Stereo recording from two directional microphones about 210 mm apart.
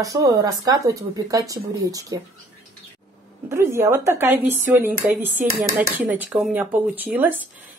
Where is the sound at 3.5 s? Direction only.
15° right (ahead or behind).